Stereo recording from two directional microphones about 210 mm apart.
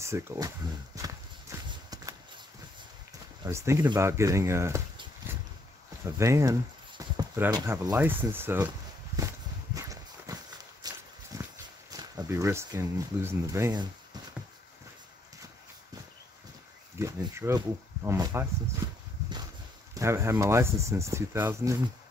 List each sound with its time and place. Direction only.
0.0 s speech: 15° right (ahead or behind)
0.9 s clip-clop: 15° right (ahead or behind)
3.4 s speech: 15° right (ahead or behind)
9.8 s walk: 15° right (ahead or behind)
11.9 s speech: 15° right (ahead or behind)
17.0 s speech: 15° right (ahead or behind)
18.8 s horse: 15° right (ahead or behind)
19.9 s speech: 15° right (ahead or behind)